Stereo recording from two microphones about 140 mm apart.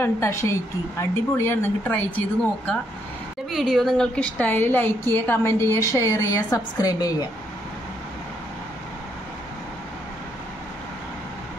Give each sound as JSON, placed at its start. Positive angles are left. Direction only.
{"t": 0.0, "sound": "a woman's voice", "side_deg": 20}